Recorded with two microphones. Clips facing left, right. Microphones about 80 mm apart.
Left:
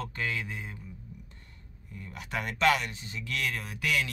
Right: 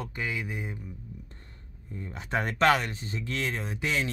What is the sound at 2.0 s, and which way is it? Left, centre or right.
Speech, right.